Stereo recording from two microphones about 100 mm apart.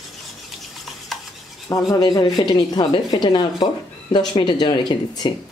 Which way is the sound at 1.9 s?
40° left (ahead or behind).